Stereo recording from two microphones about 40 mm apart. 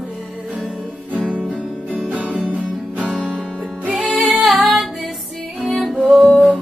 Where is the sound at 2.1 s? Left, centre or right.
Right.